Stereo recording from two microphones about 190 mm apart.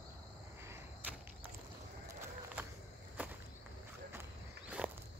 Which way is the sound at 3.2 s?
10° right (ahead or behind).